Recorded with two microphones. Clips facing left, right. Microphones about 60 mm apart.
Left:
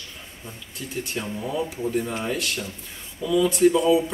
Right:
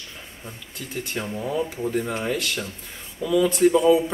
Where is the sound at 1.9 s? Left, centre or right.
Right.